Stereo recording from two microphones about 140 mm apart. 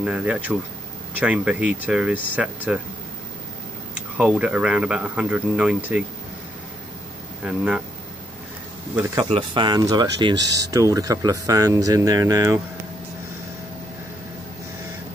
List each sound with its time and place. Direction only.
0.0 s speech: 10° right (ahead or behind)
3.9 s speech: 10° right (ahead or behind)
7.4 s speech: 5° right (ahead or behind)
9.3 s speech: 35° right (ahead or behind)